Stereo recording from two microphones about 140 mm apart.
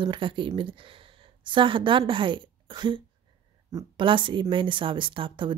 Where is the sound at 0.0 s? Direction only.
35° right (ahead or behind).